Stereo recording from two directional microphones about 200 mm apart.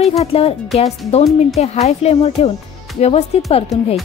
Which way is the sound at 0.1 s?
30° left (ahead or behind).